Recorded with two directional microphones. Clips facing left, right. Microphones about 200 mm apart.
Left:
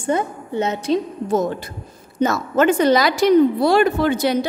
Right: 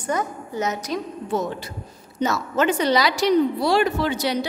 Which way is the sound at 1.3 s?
50° left (ahead or behind).